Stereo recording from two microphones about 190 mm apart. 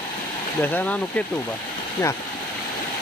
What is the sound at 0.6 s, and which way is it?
Speech, 10° left (ahead or behind).